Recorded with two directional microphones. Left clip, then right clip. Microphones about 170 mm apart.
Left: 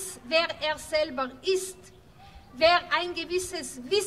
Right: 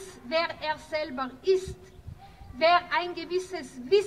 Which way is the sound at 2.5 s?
25° left (ahead or behind).